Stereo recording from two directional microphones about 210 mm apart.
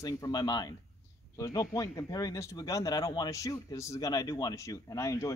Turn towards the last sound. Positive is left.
turn(degrees=15)  # may be behind; listen again after turning